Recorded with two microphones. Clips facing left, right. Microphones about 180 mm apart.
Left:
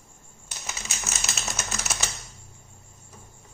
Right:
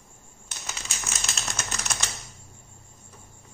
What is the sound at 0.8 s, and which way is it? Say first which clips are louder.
Typewriter: left 2 dB; 5° left (ahead or behind).